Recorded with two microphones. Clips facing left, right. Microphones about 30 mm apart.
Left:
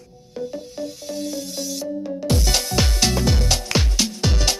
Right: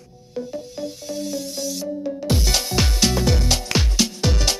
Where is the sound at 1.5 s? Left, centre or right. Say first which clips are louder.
Even; centre.